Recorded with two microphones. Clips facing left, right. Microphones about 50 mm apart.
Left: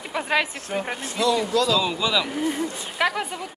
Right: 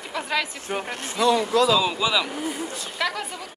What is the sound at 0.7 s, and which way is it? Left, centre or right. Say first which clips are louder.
Speech: left 1 dB; right.